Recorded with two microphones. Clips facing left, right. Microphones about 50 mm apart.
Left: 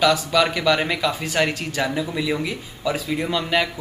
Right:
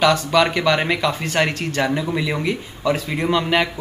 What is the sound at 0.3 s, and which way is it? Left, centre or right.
Speech, centre.